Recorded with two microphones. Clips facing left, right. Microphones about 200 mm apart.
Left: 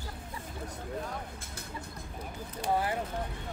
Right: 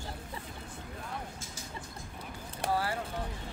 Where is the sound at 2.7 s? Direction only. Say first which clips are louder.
Left 2 dB; 20° left (ahead or behind).